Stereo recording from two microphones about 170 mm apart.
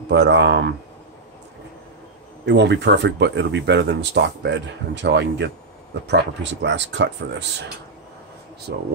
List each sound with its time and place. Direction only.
0.1 s speech: 90° right
2.4 s speech: 90° right